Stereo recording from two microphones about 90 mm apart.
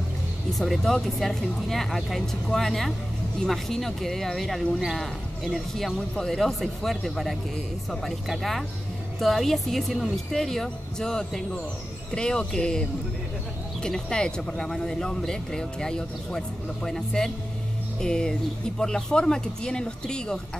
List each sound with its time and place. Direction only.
0.5 s speech: centre (ahead or behind)
13.8 s speech: 5° left (ahead or behind)